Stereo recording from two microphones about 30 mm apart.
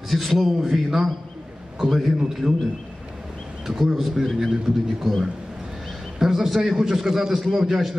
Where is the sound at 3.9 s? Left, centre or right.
Centre.